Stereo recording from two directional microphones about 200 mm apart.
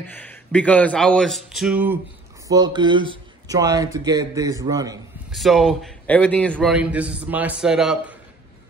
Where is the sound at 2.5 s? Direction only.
20° right (ahead or behind).